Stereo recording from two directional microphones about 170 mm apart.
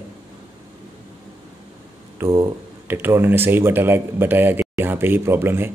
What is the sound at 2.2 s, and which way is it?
Speech, 15° right (ahead or behind).